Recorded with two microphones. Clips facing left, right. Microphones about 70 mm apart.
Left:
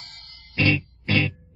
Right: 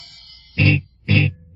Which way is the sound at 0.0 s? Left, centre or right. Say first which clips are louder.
Left 2 dB; left.